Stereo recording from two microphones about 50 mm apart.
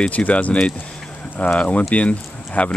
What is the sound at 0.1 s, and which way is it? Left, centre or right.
Speech, left.